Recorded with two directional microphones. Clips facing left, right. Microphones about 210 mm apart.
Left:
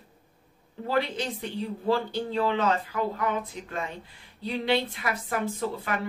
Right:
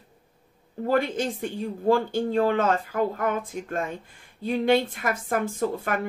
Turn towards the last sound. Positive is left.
turn(degrees=-45)  # may be behind; listen again after turning